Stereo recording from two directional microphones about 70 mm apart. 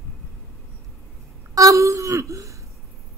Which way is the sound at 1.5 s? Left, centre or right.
Right.